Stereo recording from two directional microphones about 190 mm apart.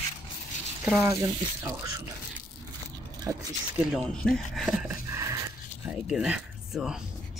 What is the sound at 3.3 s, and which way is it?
Speech, 15° right (ahead or behind).